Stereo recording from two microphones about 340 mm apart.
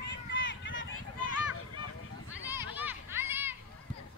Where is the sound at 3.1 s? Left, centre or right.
Centre.